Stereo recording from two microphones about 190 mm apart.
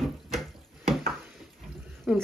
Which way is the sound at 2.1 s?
5° right (ahead or behind).